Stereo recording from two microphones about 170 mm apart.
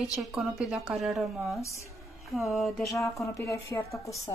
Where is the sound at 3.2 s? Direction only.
15° left (ahead or behind).